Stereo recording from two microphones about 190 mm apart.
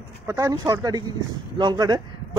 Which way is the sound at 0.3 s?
15° right (ahead or behind).